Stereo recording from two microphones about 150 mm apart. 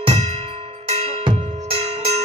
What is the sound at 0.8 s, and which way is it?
Drum, 45° right (ahead or behind).